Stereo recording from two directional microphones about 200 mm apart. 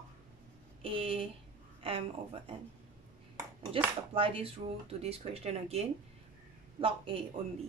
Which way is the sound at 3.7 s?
25° right (ahead or behind).